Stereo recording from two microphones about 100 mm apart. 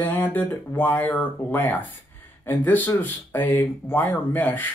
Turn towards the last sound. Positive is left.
turn(degrees=20)  # may be behind; listen again after turning